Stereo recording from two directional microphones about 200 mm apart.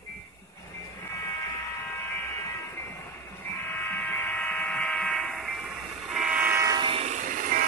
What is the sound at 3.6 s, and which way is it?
Fire alarm, 10° left (ahead or behind).